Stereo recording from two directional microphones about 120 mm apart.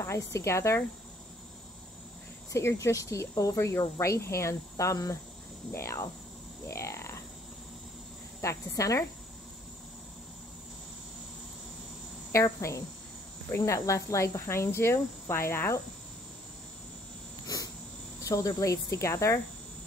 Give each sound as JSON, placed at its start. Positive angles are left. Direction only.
{"t": 0.0, "sound": "speech", "side_deg": 25}
{"t": 2.5, "sound": "speech", "side_deg": 25}
{"t": 8.4, "sound": "speech", "side_deg": 25}
{"t": 12.3, "sound": "speech", "side_deg": 25}
{"t": 18.2, "sound": "speech", "side_deg": 30}